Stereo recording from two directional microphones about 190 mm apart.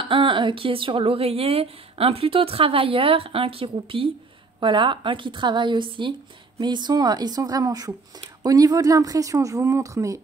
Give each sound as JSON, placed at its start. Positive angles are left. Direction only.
{"t": 0.0, "sound": "speech", "side_deg": -25}